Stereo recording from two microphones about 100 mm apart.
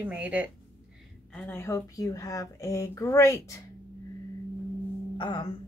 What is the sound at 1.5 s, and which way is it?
Speech, 30° left (ahead or behind).